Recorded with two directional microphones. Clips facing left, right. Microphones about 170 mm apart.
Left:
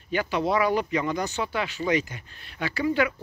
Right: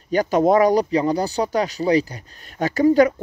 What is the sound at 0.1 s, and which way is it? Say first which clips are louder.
Speech: right 9 dB; 40° right (ahead or behind).